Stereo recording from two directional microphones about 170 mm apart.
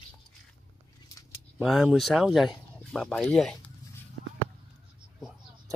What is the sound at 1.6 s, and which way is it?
Speech, 5° right (ahead or behind).